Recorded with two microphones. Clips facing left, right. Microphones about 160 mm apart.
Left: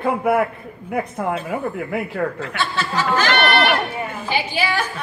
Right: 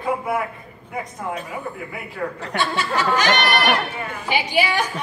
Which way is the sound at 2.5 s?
15° right (ahead or behind).